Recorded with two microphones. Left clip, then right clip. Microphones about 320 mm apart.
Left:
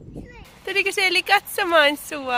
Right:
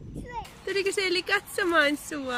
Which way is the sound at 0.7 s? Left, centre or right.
Centre.